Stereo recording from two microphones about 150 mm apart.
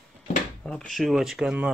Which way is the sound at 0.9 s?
Centre (ahead or behind).